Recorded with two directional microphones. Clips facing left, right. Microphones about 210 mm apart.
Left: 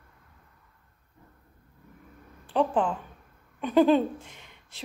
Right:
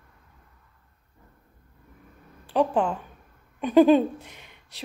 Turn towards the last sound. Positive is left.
turn(degrees=-15)  # may be behind; listen again after turning